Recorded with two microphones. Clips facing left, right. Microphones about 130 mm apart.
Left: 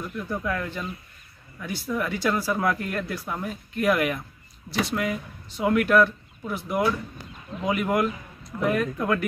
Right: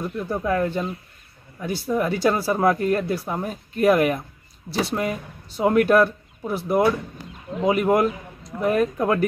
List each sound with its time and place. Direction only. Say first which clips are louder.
0.0 s speech: right 4 dB; 30° right (ahead or behind)